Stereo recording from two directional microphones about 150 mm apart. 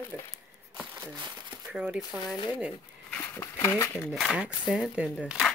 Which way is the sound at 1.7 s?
5° right (ahead or behind).